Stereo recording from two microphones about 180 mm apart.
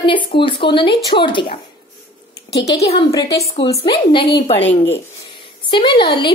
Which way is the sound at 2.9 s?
30° left (ahead or behind).